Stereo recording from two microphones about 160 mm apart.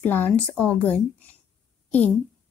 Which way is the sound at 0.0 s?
10° left (ahead or behind).